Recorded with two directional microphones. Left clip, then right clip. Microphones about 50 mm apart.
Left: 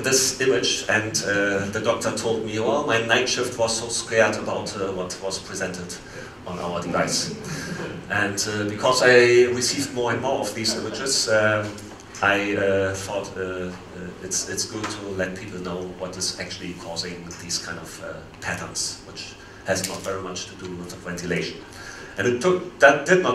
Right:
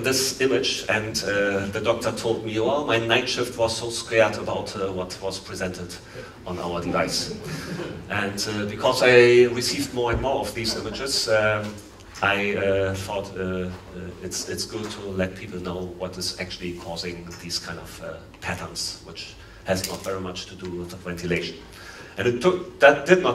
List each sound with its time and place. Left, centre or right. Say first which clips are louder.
0.0 s speech: left 2 dB; left
6.6 s a man's voice: left 1 dB; centre
8.1 s speech: left 3 dB; left
11.2 s a man's voice: left 1 dB; centre
14.3 s speech: left 3 dB; left
20.1 s speech: even; centre
22.1 s speech: left 1 dB; left